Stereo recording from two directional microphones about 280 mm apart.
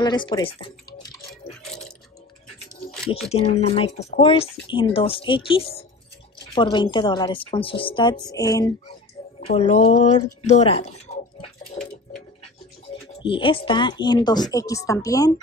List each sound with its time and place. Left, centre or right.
0.0 s speech: centre
3.3 s a woman's voice: left
13.2 s a woman's voice: centre